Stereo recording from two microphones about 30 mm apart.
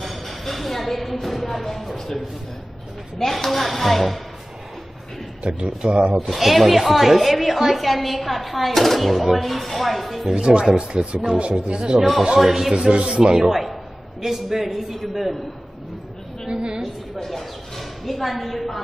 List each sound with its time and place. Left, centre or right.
0.0 s speech: centre
3.2 s speech: centre
5.9 s speech: right
6.1 s speech: centre
10.3 s speech: right
11.3 s speech: right
12.4 s speech: centre
12.8 s speech: right
13.1 s speech: right
13.5 s speech: centre
16.4 s speech: right
17.2 s speech: centre